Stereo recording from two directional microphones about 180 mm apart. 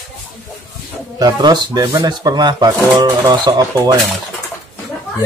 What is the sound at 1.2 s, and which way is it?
Speech, 20° right (ahead or behind).